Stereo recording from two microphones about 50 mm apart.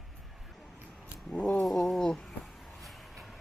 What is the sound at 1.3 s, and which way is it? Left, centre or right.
Speech, left.